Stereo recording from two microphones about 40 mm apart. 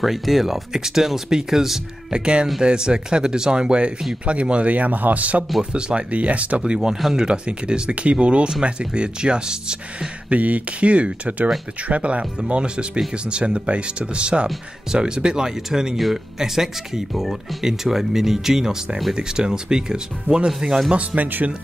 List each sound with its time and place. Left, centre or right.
0.0 s speech: centre
2.1 s speech: right
5.6 s speech: right
6.6 s speech: centre
10.3 s speech: right; by 20.8 s centre
20.9 s speech: right